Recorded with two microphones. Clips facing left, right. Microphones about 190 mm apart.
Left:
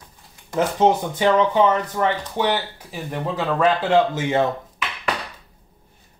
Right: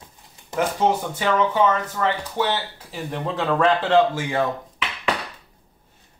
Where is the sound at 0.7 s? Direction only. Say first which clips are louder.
Left 6 dB; 20° left (ahead or behind); by 4.0 s 5° left (ahead or behind).